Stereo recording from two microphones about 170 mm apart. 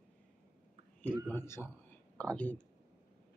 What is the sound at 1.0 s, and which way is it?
Speech, 10° left (ahead or behind).